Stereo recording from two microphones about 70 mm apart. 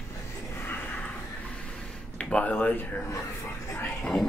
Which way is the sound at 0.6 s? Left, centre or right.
Left.